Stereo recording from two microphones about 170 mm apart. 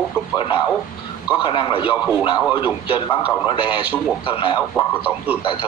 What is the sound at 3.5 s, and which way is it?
A man's voice, 30° left (ahead or behind).